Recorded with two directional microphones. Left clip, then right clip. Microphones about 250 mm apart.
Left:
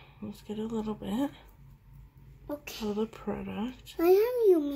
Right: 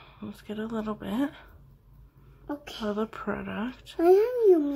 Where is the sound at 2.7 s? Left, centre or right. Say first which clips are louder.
Right 3 dB; centre.